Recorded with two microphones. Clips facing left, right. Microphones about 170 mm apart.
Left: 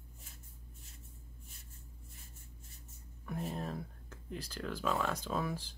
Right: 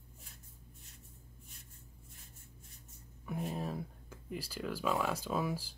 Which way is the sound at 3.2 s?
5° right (ahead or behind).